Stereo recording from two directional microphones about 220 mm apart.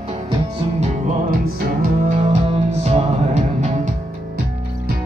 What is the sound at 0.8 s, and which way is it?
Music, 35° right (ahead or behind).